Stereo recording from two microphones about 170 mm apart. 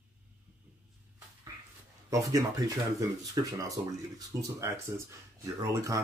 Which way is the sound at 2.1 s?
20° right (ahead or behind).